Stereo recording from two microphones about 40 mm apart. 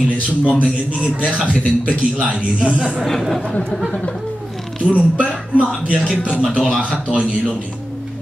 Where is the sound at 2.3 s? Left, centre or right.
Right.